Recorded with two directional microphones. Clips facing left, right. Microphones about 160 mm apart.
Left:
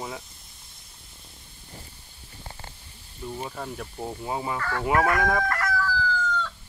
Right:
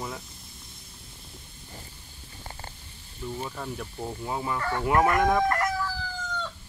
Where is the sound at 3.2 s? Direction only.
10° left (ahead or behind).